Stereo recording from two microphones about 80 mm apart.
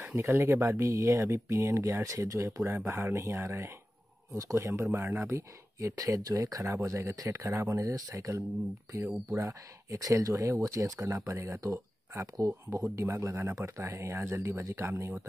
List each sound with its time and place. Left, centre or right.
0.0 s speech: right
2.2 s speech: right
9.5 s speech: right